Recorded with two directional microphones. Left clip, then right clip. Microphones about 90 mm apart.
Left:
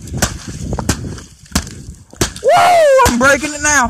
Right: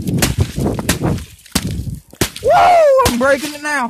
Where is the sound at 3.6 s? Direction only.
20° left (ahead or behind).